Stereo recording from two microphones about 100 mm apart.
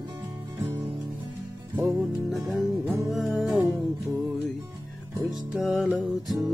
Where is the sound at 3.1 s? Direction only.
Centre (ahead or behind).